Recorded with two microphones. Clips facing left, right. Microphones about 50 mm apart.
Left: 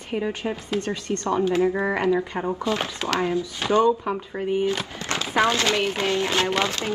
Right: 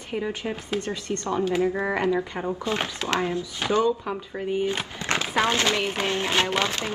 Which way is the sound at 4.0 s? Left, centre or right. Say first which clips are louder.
Left 3 dB; centre.